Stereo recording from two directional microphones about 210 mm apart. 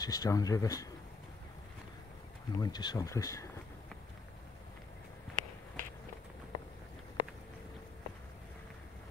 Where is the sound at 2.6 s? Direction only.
20° left (ahead or behind).